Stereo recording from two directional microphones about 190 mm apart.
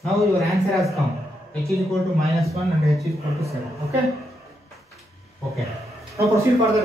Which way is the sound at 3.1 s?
15° right (ahead or behind).